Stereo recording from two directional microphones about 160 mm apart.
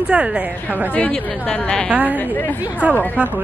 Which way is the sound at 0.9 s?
5° left (ahead or behind).